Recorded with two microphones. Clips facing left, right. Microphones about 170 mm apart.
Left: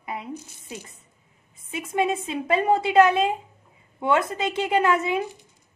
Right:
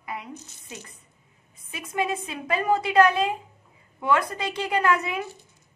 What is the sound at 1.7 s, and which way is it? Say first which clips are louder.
A woman's voice: left 4 dB; 25° left (ahead or behind).